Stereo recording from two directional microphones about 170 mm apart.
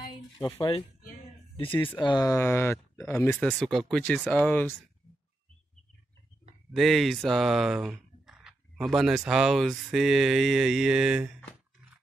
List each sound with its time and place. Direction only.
0.6 s speech: 30° left (ahead or behind)
2.0 s speech: 25° left (ahead or behind); by 4.7 s 10° left (ahead or behind)
6.7 s speech: centre (ahead or behind)